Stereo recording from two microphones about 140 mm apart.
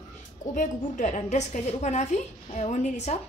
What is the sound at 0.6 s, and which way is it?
A woman's voice, 65° left (ahead or behind).